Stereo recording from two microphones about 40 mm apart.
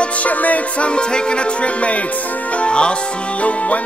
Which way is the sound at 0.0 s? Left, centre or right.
Left.